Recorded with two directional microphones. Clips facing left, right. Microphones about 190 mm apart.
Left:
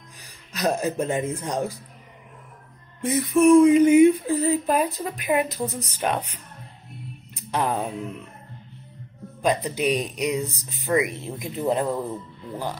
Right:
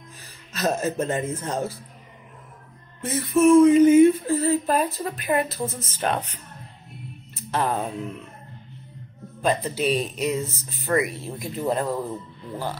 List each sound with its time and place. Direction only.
0.2 s speech: 15° left (ahead or behind)
3.0 s speech: 15° left (ahead or behind)
7.3 s music: 15° left (ahead or behind)
9.4 s speech: 15° left (ahead or behind)